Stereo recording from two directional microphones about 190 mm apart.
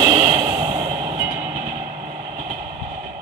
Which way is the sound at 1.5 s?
40° right (ahead or behind).